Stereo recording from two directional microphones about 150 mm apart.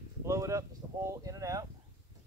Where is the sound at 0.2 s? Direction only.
20° right (ahead or behind).